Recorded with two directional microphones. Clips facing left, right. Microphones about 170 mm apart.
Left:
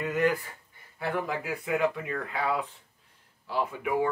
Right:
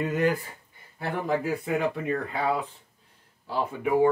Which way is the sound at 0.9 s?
35° right (ahead or behind).